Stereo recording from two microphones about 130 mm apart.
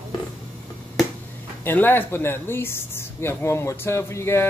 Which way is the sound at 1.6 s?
15° left (ahead or behind).